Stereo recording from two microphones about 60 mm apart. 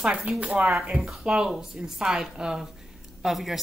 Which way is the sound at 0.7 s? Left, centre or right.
Centre.